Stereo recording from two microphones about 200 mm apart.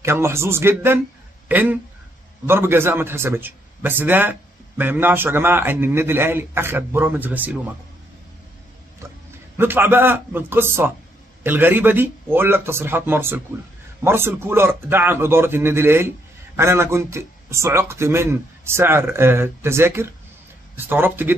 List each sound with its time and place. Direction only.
0.0 s a man's voice: 15° right (ahead or behind)
9.0 s a sound: 15° right (ahead or behind)
9.6 s a man's voice: 10° right (ahead or behind)